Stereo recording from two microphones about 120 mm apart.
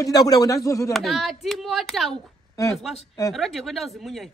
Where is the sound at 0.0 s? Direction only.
30° left (ahead or behind).